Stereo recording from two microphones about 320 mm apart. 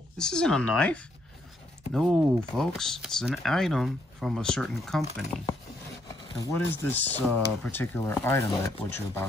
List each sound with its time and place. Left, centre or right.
0.2 s speech: centre